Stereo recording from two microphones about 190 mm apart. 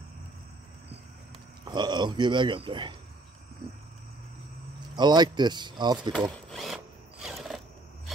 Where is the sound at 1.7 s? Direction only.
20° right (ahead or behind).